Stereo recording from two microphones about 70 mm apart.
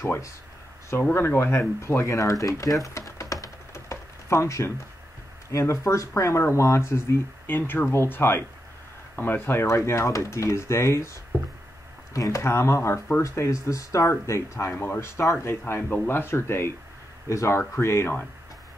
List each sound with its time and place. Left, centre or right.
0.0 s speech: left
2.4 s typing: left
5.5 s speech: left
12.1 s speech: left
14.7 s speech: left